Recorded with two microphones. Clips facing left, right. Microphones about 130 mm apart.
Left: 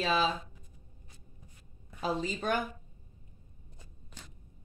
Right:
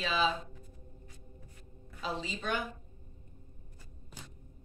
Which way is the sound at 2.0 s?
45° left (ahead or behind).